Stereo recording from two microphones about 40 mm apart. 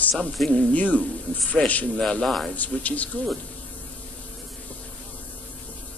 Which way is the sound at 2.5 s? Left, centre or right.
Left.